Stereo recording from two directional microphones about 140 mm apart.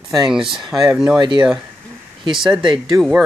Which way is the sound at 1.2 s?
30° right (ahead or behind).